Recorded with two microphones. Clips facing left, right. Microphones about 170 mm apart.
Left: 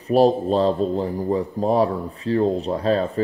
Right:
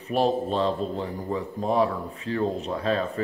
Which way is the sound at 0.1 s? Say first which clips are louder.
Left 7 dB; 40° left (ahead or behind).